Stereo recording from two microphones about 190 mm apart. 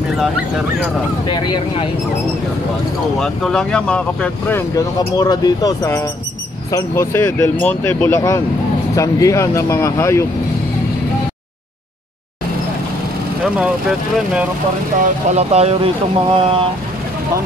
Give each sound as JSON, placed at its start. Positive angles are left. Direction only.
{"t": 1.2, "sound": "speech", "side_deg": 25}
{"t": 3.2, "sound": "speech", "side_deg": 5}
{"t": 13.6, "sound": "speech", "side_deg": -5}
{"t": 15.0, "sound": "speech", "side_deg": -35}